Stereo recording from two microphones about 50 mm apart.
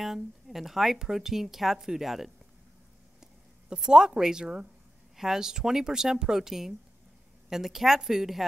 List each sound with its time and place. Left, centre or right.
0.0 s a woman's voice: centre
3.2 s a sound: centre
3.8 s speech: centre